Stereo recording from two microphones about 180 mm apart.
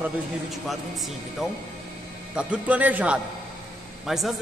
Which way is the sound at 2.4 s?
5° right (ahead or behind).